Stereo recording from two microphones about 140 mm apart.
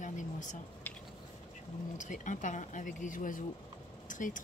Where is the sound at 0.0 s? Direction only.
65° left (ahead or behind).